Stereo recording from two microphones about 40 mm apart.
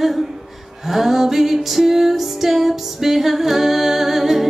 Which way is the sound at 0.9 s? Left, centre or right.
Centre.